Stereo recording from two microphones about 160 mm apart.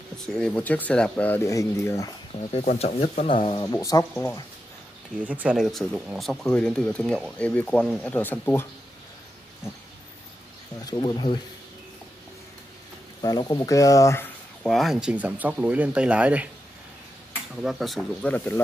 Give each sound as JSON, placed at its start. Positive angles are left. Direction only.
{"t": 0.3, "sound": "speech", "side_deg": 5}
{"t": 2.6, "sound": "speech", "side_deg": 50}
{"t": 3.6, "sound": "speech", "side_deg": 20}
{"t": 5.2, "sound": "speech", "side_deg": -10}
{"t": 10.9, "sound": "speech", "side_deg": 30}
{"t": 13.2, "sound": "speech", "side_deg": 25}
{"t": 14.7, "sound": "speech", "side_deg": 0}
{"t": 17.6, "sound": "speech", "side_deg": 0}